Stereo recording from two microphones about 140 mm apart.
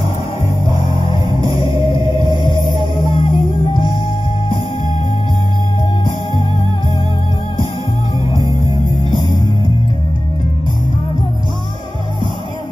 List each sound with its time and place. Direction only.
1.0 s music: 35° left (ahead or behind)
2.0 s music: 30° right (ahead or behind)
2.7 s music: 35° left (ahead or behind)